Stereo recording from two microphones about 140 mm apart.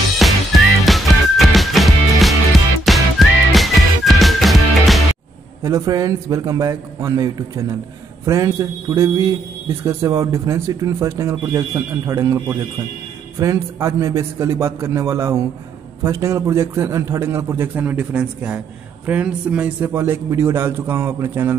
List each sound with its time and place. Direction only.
0.2 s music: centre (ahead or behind)
5.6 s a man's voice: 25° right (ahead or behind)